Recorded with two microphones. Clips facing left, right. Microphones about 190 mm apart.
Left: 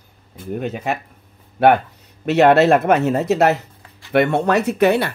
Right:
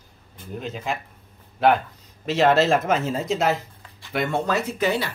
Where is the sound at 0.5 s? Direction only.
65° left (ahead or behind).